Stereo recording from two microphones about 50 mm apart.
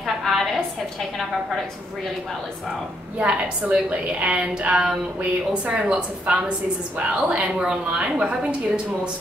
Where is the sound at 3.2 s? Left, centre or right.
Right.